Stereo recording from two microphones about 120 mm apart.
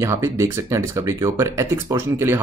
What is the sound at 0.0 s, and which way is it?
Speech, 25° right (ahead or behind).